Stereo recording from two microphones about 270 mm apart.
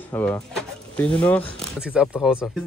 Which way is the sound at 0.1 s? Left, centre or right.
Centre.